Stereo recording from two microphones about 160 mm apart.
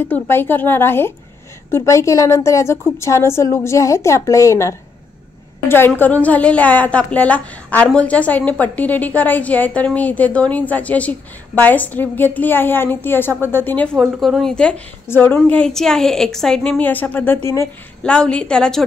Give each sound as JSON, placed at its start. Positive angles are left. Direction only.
{"t": 0.0, "sound": "a woman's voice", "side_deg": 15}
{"t": 13.9, "sound": "a woman's voice", "side_deg": 0}